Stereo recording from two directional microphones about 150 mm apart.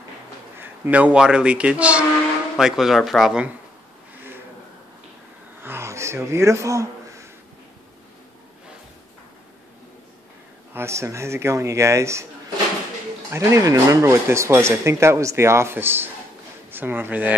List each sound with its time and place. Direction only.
0.6 s speech: 10° right (ahead or behind)
5.6 s a sound: 15° right (ahead or behind)
10.7 s speech: 15° right (ahead or behind)
13.3 s speech: 20° right (ahead or behind)